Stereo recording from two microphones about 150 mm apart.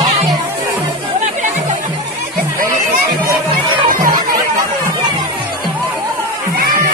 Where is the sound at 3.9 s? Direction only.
65° right (ahead or behind).